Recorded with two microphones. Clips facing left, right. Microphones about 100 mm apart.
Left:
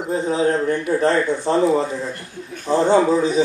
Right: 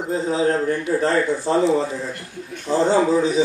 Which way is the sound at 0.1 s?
25° left (ahead or behind).